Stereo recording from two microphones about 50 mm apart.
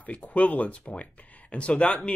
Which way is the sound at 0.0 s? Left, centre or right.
Left.